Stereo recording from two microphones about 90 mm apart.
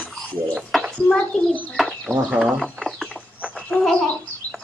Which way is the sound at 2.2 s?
10° right (ahead or behind).